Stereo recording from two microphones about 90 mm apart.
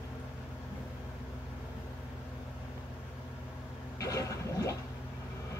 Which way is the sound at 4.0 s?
35° left (ahead or behind).